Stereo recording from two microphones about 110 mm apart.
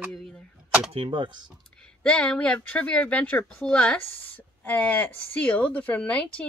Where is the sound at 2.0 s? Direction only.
10° left (ahead or behind).